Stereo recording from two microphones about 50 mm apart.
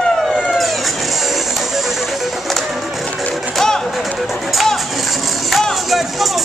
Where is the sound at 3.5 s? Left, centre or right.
Centre.